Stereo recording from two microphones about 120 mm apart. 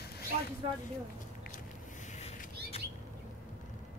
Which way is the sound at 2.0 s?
65° left (ahead or behind).